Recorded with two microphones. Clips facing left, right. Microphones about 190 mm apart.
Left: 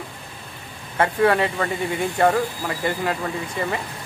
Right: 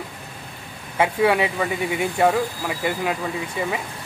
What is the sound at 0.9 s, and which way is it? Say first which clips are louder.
Speech: even; 10° right (ahead or behind).